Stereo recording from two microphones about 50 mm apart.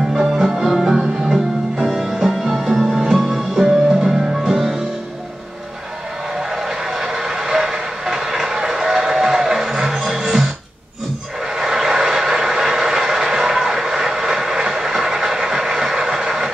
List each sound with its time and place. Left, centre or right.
0.3 s music: centre
6.3 s vehicle: centre
11.5 s vehicle: centre